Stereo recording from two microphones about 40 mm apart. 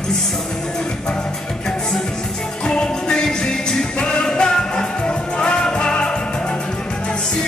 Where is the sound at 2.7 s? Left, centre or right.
Centre.